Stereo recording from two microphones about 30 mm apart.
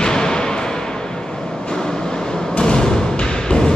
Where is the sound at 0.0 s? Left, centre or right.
Left.